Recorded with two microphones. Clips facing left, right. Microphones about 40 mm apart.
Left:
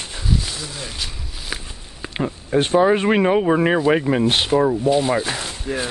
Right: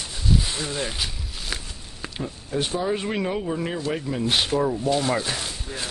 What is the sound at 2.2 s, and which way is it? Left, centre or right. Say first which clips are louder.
Speech: left 8 dB; left.